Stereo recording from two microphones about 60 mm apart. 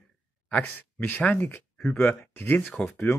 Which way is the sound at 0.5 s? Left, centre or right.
Left.